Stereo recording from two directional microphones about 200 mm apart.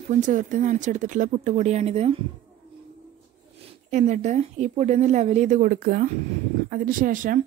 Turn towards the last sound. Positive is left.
turn(degrees=-40)  # may be behind; listen again after turning